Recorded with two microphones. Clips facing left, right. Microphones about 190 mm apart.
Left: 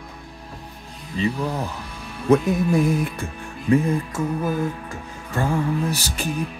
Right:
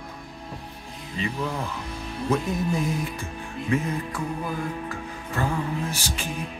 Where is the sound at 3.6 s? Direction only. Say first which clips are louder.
Left 7 dB; 35° left (ahead or behind).